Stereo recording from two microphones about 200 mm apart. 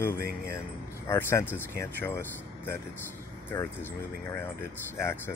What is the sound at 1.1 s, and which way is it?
Speech, 10° left (ahead or behind).